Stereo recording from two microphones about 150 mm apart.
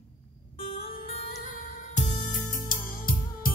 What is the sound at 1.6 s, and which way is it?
Music, 60° left (ahead or behind).